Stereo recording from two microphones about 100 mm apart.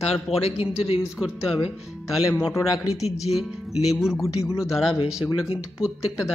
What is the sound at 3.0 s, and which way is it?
Speech, 90° left.